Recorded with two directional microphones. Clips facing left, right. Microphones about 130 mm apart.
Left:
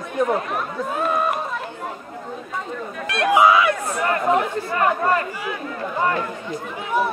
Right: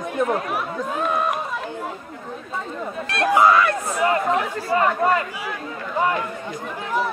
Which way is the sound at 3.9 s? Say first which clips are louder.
Right 2 dB; 10° right (ahead or behind).